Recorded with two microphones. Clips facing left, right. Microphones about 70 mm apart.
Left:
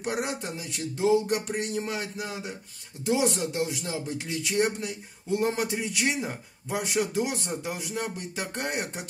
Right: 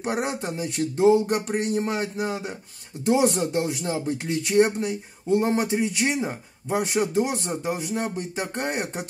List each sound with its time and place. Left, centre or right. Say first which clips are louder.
0.0 s speech: right 4 dB; right
6.7 s speech: right 4 dB; right